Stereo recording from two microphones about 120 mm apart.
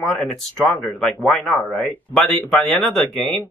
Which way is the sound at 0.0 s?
5° left (ahead or behind).